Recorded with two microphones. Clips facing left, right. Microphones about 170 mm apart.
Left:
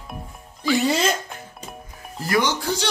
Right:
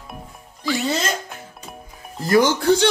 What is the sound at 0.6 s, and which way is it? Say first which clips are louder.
Speech: left 3 dB; centre (ahead or behind).